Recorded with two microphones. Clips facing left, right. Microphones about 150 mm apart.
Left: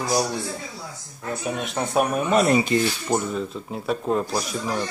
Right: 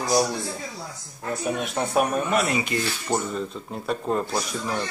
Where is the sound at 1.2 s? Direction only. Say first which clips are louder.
Right 1 dB; centre (ahead or behind).